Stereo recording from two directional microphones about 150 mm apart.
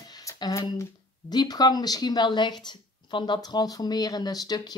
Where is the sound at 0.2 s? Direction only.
20° left (ahead or behind).